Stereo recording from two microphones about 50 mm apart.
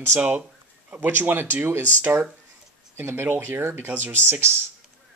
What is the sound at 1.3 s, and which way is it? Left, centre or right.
Speech, right.